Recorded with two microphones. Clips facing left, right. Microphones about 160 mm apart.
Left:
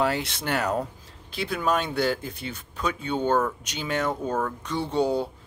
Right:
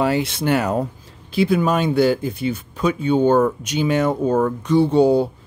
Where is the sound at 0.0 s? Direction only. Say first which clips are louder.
Right 7 dB; 5° right (ahead or behind).